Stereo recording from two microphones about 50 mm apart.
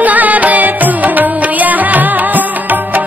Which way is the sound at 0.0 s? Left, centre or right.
Right.